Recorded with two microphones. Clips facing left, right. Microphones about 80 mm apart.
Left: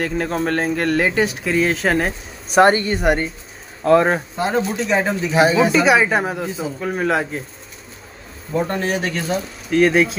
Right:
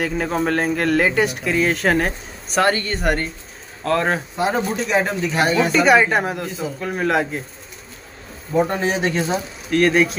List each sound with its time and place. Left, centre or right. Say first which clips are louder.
0.0 s speech: even; centre
2.6 s speech: left 5 dB; left
2.9 s speech: left 3 dB; centre
4.4 s speech: left 1 dB; centre
8.5 s speech: right 2 dB; centre
9.7 s speech: left 1 dB; centre